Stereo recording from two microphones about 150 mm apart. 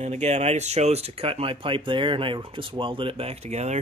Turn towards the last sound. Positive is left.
turn(degrees=-45)  # may be behind; listen again after turning